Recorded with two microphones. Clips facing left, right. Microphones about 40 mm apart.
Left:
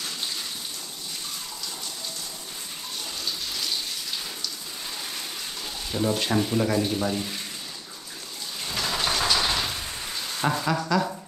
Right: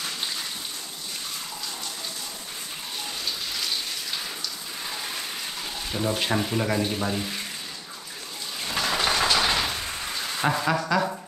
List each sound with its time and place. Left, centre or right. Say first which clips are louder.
5.9 s speech: left 1 dB; centre
8.7 s rain: right 2 dB; right
10.4 s speech: right 1 dB; centre